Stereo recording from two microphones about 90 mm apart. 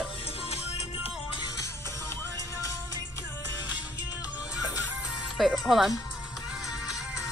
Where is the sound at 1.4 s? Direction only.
40° left (ahead or behind).